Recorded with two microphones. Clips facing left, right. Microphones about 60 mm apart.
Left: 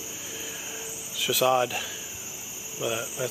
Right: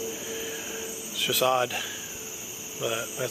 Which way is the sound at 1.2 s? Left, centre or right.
Centre.